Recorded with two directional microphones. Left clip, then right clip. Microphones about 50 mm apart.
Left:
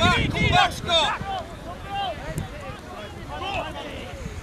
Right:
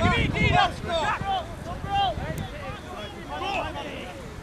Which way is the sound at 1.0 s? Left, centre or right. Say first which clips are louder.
Even; centre.